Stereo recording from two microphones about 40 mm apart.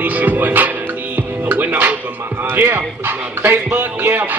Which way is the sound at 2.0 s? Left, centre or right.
Right.